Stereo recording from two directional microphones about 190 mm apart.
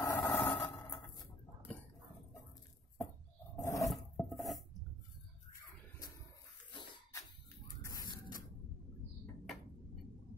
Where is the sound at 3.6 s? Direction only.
15° left (ahead or behind).